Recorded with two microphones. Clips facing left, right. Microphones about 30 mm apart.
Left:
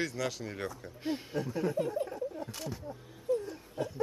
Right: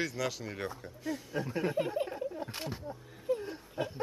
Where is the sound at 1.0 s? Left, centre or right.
Left.